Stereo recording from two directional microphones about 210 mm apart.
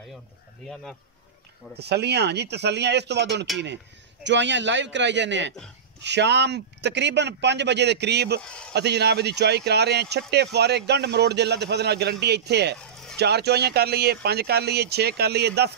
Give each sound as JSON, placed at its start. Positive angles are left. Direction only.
{"t": 1.8, "sound": "a man's voice", "side_deg": -50}
{"t": 8.4, "sound": "a man's voice", "side_deg": 5}
{"t": 8.7, "sound": "speech", "side_deg": -50}